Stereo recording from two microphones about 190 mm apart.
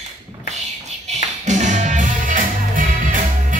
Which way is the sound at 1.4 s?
40° right (ahead or behind).